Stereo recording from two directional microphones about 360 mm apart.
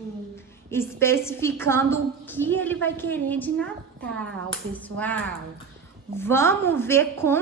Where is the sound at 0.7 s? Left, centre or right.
Centre.